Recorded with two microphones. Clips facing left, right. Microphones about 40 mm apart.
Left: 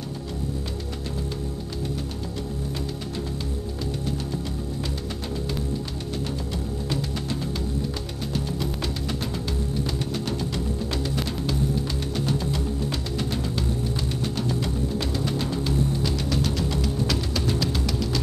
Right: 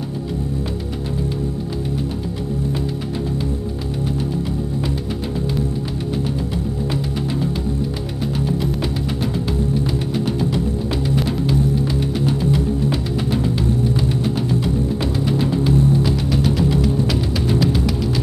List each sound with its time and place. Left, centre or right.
11.1 s music: centre